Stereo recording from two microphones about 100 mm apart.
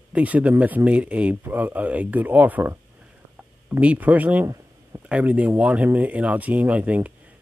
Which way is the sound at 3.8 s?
15° right (ahead or behind).